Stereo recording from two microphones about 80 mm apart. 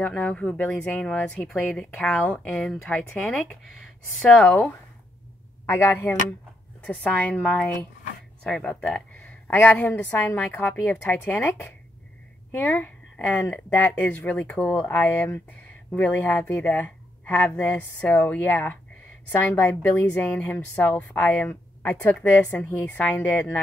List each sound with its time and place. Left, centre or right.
0.0 s speech: centre
6.0 s a woman's voice: centre
8.5 s speech: centre
9.2 s a sound: left
9.7 s a woman's voice: left
12.4 s a sound: left
13.4 s a woman's voice: left; by 14.8 s centre
14.9 s a woman's voice: left